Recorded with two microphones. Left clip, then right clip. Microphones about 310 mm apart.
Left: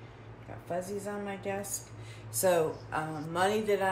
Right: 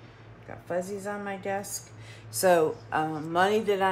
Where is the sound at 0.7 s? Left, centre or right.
Right.